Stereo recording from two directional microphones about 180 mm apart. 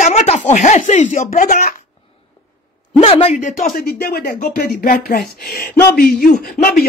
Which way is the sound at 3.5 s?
55° left (ahead or behind).